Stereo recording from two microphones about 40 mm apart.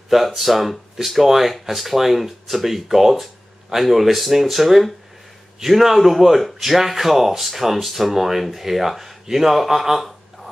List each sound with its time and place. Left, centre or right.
0.1 s speech: centre